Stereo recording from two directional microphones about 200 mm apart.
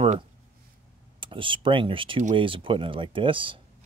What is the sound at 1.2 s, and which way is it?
Speech, 25° right (ahead or behind).